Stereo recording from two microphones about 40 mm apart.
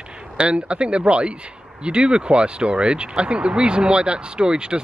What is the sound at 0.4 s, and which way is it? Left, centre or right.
Speech, right.